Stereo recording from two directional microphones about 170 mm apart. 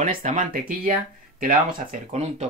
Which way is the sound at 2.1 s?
40° right (ahead or behind).